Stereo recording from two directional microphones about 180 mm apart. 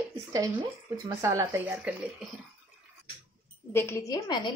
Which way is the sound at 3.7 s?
15° left (ahead or behind).